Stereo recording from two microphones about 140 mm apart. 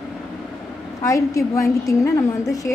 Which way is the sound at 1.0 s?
20° left (ahead or behind).